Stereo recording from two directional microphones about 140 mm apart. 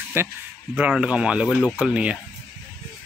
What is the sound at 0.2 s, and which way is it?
Speech, 15° right (ahead or behind).